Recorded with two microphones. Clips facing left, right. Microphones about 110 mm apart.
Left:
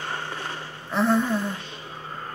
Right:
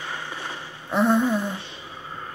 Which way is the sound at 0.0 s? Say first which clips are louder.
Left 2 dB; 45° left (ahead or behind).